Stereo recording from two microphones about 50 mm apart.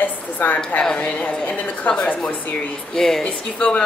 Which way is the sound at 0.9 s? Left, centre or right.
Left.